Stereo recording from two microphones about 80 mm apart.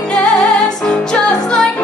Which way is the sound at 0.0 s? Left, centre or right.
Centre.